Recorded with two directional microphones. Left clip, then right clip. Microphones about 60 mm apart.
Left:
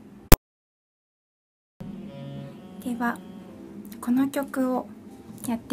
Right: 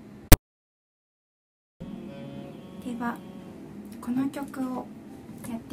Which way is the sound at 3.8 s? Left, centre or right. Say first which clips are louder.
Left 5 dB; left.